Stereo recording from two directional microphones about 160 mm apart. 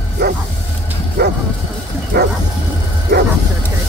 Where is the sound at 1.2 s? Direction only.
90° right.